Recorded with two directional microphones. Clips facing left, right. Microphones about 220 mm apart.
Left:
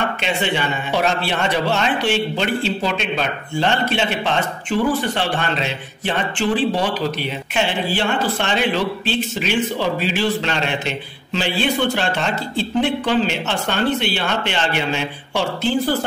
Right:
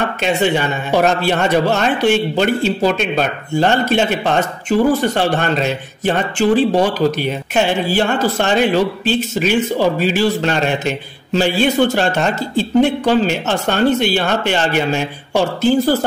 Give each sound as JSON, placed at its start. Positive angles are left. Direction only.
{"t": 0.2, "sound": "a man's voice", "side_deg": -45}